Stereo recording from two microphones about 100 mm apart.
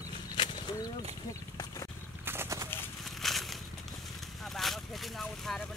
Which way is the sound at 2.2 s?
25° right (ahead or behind).